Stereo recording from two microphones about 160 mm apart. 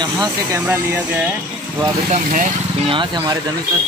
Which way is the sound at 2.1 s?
50° right (ahead or behind).